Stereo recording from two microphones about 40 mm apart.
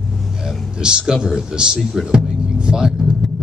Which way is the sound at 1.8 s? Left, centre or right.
Centre.